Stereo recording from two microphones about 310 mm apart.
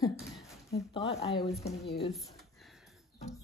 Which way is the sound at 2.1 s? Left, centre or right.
Centre.